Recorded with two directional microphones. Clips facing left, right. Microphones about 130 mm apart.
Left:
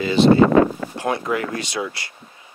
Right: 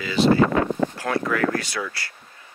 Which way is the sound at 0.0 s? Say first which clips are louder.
Left 4 dB; 25° left (ahead or behind).